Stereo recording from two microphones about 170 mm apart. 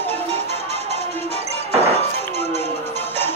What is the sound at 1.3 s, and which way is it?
Music, 40° right (ahead or behind).